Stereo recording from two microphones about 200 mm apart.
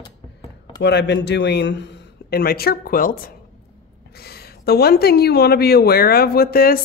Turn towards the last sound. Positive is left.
turn(degrees=50)  # may be behind; listen again after turning